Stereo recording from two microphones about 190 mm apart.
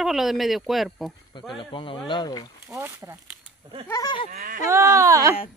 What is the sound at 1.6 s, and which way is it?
Speech, 25° left (ahead or behind).